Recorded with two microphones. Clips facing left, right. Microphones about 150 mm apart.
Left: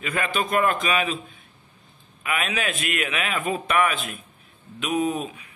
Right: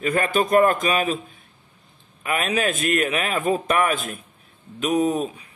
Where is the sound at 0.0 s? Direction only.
45° right (ahead or behind).